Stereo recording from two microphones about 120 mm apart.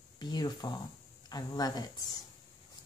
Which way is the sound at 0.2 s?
35° left (ahead or behind).